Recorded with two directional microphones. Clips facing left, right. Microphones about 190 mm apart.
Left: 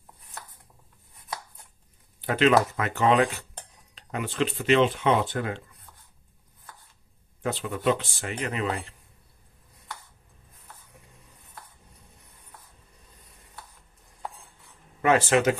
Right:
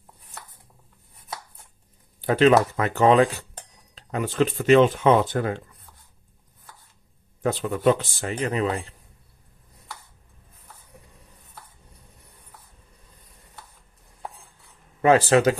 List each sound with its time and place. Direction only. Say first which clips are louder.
2.2 s speech: right 4 dB; 35° right (ahead or behind)
7.4 s speech: right 5 dB; 40° right (ahead or behind)
15.0 s speech: right 4 dB; 35° right (ahead or behind)